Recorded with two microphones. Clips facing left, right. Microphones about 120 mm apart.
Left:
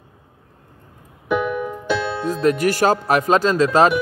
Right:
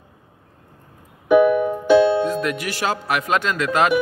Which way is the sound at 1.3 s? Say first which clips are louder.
Right 7 dB; 55° right (ahead or behind).